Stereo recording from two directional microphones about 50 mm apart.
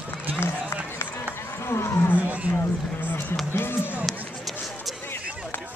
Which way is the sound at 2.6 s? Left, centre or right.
Left.